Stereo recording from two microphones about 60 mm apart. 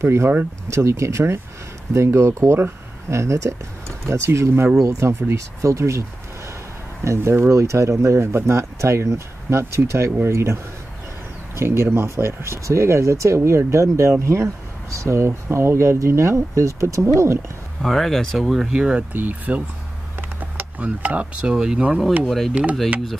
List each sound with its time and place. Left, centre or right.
0.0 s speech: right
7.1 s speech: right
17.8 s speech: centre
18.6 s speech: centre
19.1 s speech: right